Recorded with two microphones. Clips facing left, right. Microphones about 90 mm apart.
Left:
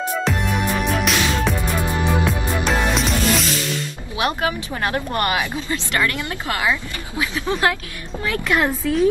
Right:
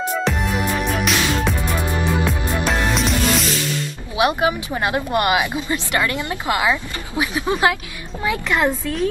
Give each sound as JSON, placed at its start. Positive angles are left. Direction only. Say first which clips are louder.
{"t": 0.1, "sound": "music", "louder": "even", "side_deg": 0}
{"t": 4.2, "sound": "speech", "louder": "right 4 dB", "side_deg": -20}
{"t": 8.5, "sound": "a woman's voice", "louder": "left 2 dB", "side_deg": 0}